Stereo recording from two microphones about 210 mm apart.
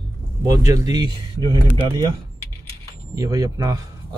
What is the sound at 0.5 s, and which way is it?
Speech, 15° right (ahead or behind).